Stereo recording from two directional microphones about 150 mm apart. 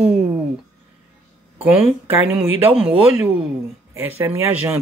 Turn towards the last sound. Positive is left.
turn(degrees=-15)  # may be behind; listen again after turning